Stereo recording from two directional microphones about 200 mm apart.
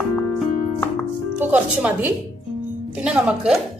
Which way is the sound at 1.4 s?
10° right (ahead or behind).